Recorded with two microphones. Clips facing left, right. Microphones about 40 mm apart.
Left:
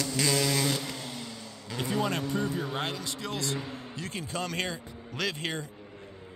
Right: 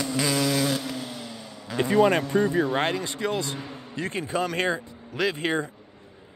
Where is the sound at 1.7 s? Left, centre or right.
Right.